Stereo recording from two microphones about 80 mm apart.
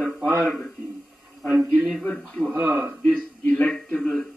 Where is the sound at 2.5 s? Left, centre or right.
Right.